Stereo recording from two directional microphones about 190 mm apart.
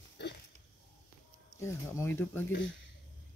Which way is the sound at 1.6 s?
15° left (ahead or behind).